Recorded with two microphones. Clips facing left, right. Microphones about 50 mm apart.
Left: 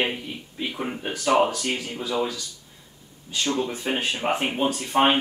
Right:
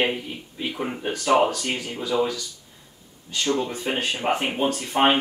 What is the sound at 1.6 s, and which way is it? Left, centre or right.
Speech, right.